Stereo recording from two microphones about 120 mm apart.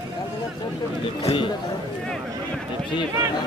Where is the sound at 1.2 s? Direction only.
50° left (ahead or behind).